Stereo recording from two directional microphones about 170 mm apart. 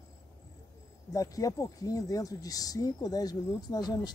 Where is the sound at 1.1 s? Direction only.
20° left (ahead or behind).